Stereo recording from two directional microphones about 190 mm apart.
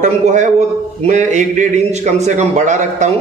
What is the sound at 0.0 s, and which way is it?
A man's voice, 40° right (ahead or behind).